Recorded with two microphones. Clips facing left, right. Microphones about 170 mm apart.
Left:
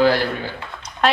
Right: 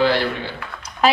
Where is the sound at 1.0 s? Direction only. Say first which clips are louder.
Right 1 dB; centre (ahead or behind).